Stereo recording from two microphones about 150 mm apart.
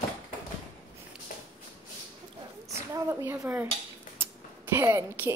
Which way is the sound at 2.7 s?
20° right (ahead or behind).